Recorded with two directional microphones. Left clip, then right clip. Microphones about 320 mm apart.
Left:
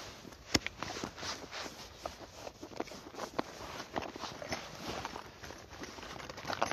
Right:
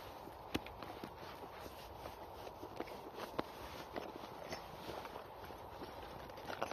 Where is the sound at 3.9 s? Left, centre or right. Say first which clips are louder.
Left 8 dB; centre.